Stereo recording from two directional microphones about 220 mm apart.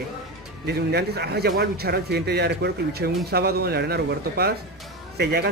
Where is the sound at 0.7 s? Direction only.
45° right (ahead or behind).